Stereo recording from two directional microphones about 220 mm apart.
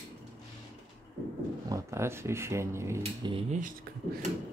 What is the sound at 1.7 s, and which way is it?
Speech, 10° right (ahead or behind).